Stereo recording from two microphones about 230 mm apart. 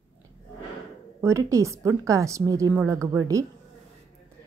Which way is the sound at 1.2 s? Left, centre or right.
Centre.